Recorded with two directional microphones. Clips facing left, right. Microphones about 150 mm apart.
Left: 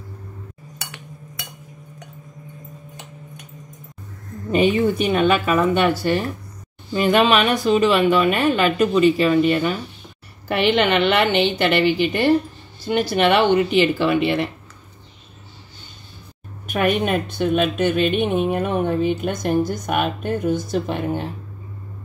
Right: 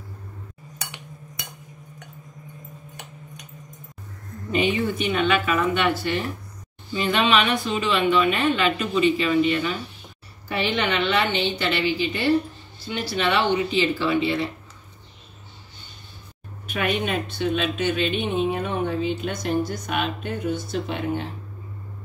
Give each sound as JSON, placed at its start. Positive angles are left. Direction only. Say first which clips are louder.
{"t": 4.5, "sound": "a woman's voice", "louder": "left 6 dB", "side_deg": 40}
{"t": 10.5, "sound": "a woman's voice", "louder": "left 7 dB", "side_deg": 65}
{"t": 16.6, "sound": "a woman's voice", "louder": "left 5 dB", "side_deg": 45}